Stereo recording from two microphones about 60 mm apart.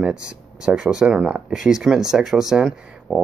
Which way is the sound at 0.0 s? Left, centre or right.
Centre.